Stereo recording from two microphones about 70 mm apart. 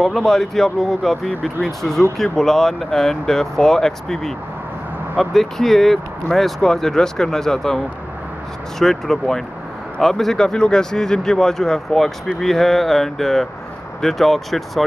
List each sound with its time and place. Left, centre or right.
0.0 s speech: centre